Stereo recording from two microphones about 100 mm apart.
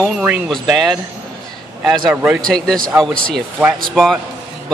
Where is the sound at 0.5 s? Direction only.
Centre (ahead or behind).